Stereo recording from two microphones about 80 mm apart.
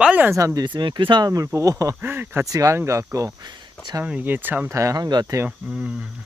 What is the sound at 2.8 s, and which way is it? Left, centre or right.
Speech, right.